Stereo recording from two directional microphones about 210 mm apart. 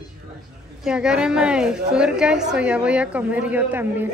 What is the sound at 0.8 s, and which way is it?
A woman's voice, 5° right (ahead or behind).